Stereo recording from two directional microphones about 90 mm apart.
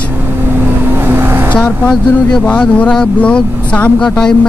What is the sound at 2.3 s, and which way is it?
Speech, 10° left (ahead or behind).